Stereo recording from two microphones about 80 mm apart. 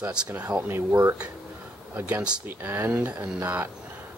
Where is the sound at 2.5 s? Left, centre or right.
Right.